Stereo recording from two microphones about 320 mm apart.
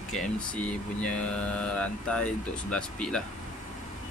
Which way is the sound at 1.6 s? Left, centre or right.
Centre.